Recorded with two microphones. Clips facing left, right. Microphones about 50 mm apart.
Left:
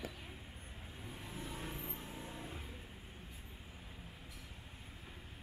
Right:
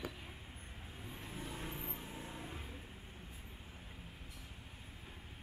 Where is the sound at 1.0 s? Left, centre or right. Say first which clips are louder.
Even; centre.